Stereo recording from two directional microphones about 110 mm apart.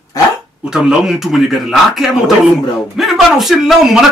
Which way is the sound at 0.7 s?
5° right (ahead or behind).